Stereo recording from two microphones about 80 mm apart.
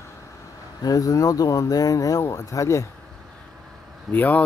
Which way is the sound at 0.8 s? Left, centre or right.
Left.